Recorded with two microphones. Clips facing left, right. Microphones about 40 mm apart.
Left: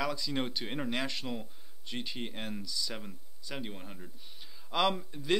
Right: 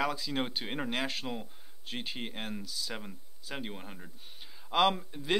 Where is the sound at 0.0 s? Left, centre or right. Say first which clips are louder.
Right 2 dB; centre.